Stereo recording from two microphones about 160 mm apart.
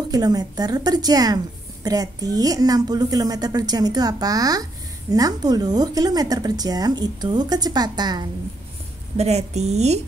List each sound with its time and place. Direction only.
0.1 s a woman's voice: 25° right (ahead or behind)
9.1 s a woman's voice: 40° right (ahead or behind)